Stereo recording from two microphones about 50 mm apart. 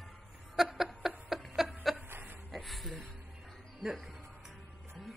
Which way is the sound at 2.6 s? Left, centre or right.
Centre.